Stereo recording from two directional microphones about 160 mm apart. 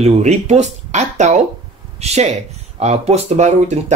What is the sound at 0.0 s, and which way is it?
Speech, 45° right (ahead or behind).